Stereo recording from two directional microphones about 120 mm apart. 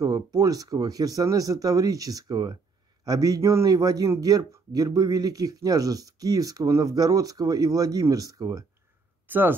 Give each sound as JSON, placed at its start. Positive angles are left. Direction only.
{"t": 0.0, "sound": "a man's voice", "side_deg": -30}
{"t": 9.3, "sound": "speech", "side_deg": -15}